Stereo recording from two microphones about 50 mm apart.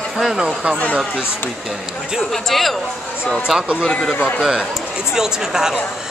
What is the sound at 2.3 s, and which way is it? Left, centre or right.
Speech, centre.